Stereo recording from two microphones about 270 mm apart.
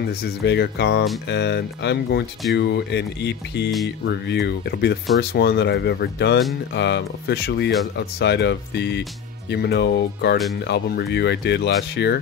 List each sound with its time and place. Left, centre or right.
0.1 s speech: left